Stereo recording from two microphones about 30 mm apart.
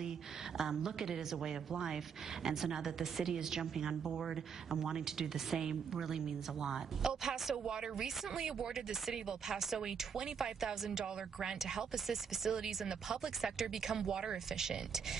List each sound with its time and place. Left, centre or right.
0.6 s a woman's voice: centre
9.1 s a woman's voice: centre